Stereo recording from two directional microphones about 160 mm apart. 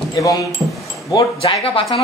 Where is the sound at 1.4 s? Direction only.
35° left (ahead or behind).